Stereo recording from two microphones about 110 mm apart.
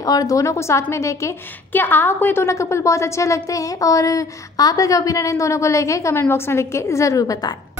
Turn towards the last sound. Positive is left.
turn(degrees=30)  # may be behind; listen again after turning